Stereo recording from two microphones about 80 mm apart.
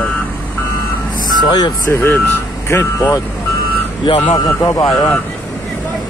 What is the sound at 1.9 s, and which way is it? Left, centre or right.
Speech, left.